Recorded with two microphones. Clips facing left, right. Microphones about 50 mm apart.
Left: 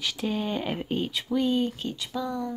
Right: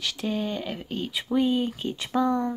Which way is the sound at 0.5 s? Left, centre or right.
Centre.